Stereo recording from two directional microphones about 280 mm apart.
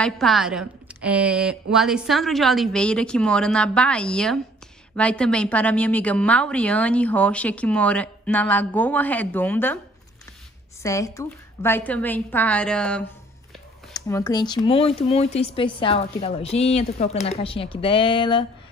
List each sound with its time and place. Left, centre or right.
0.0 s a woman's voice: centre
10.8 s a woman's voice: centre